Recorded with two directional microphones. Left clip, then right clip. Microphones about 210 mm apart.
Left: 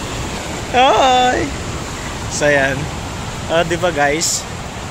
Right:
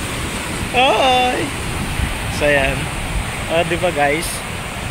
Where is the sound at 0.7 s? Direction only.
20° left (ahead or behind).